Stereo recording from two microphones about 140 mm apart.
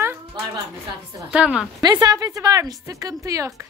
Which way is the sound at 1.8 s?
25° right (ahead or behind).